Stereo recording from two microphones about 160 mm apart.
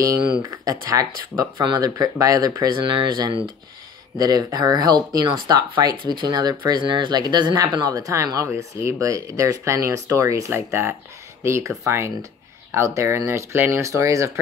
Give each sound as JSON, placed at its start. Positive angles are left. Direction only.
{"t": 0.0, "sound": "speech", "side_deg": -20}